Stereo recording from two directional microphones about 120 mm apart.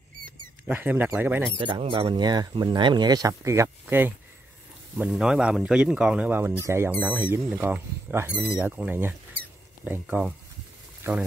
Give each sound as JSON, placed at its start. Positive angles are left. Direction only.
{"t": 0.7, "sound": "speech", "side_deg": -15}
{"t": 1.8, "sound": "speech", "side_deg": -50}
{"t": 2.0, "sound": "speech", "side_deg": -35}
{"t": 5.0, "sound": "speech", "side_deg": -5}
{"t": 11.1, "sound": "speech", "side_deg": -20}